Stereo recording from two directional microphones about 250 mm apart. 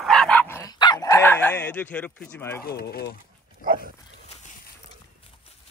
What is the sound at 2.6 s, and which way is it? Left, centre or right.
Speech, left.